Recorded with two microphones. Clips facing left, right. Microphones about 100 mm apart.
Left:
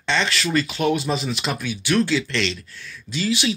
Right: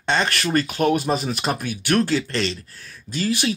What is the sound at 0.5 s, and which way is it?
Speech, 50° right (ahead or behind).